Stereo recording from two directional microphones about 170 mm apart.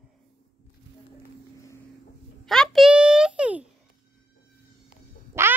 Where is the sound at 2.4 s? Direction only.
Centre (ahead or behind).